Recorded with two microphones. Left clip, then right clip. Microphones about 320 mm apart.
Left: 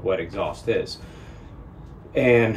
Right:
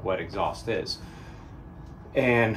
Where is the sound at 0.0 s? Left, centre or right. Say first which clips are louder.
Left 3 dB; centre.